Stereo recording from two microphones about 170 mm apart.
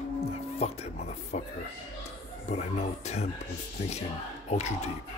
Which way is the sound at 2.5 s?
40° left (ahead or behind).